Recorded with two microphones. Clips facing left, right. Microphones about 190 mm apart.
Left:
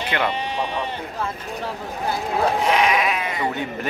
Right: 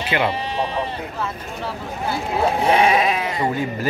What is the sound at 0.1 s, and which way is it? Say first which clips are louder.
Speech: right 3 dB; 10° right (ahead or behind).